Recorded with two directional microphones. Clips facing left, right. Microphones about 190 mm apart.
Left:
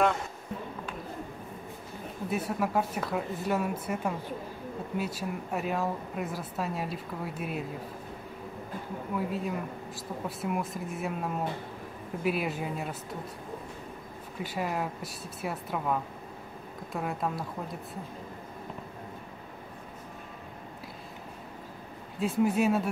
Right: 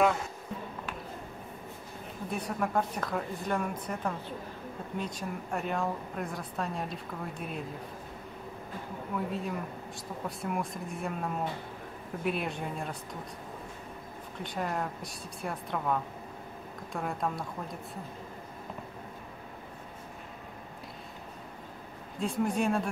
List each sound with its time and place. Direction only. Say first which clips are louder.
2.2 s speech: left 3 dB; 5° left (ahead or behind)
9.1 s speech: left 2 dB; centre (ahead or behind)
14.4 s speech: left 2 dB; 5° left (ahead or behind)
22.2 s speech: left 3 dB; 5° left (ahead or behind)